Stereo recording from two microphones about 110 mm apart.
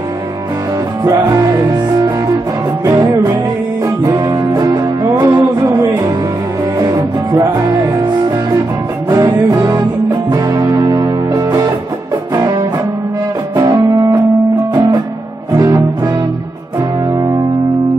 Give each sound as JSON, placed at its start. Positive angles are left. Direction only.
{"t": 1.0, "sound": "music", "side_deg": -30}
{"t": 3.8, "sound": "music", "side_deg": -30}
{"t": 4.6, "sound": "music", "side_deg": -40}
{"t": 9.1, "sound": "music", "side_deg": -35}
{"t": 15.5, "sound": "music", "side_deg": -30}